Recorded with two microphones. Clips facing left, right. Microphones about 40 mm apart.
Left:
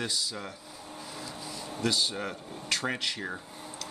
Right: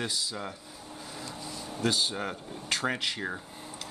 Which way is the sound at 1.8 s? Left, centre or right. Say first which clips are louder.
Right 1 dB; right.